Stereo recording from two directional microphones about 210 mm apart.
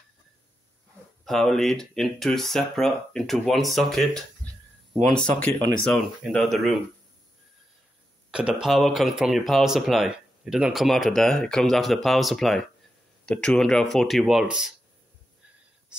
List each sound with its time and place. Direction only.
1.2 s speech: centre (ahead or behind)
5.9 s speech: centre (ahead or behind)
8.3 s speech: 5° right (ahead or behind)